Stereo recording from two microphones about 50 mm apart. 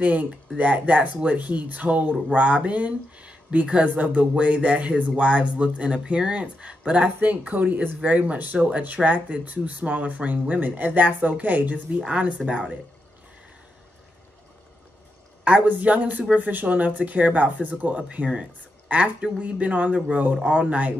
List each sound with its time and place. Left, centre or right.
0.0 s speech: right
15.4 s speech: right